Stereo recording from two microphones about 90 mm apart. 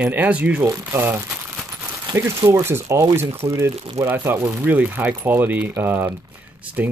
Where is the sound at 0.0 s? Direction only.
15° right (ahead or behind).